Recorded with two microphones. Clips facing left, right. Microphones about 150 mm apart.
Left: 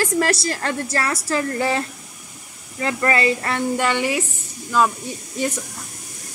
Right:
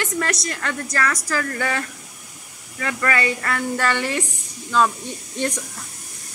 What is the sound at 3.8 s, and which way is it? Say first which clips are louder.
A woman's voice: left 2 dB; 15° left (ahead or behind).